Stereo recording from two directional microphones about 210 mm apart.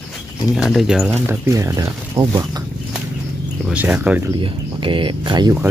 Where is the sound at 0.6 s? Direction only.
Centre (ahead or behind); by 2.6 s 20° right (ahead or behind).